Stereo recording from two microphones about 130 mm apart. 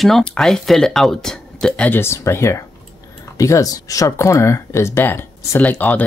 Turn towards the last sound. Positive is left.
turn(degrees=15)  # may be behind; listen again after turning